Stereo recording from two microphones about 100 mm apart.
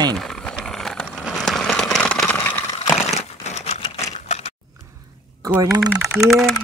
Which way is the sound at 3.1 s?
90° left.